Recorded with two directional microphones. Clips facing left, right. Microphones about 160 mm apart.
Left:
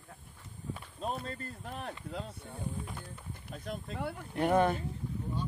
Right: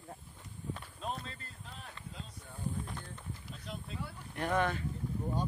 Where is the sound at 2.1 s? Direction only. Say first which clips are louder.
Left 7 dB; 65° left (ahead or behind).